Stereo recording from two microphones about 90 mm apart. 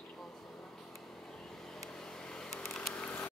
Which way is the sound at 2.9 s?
15° left (ahead or behind).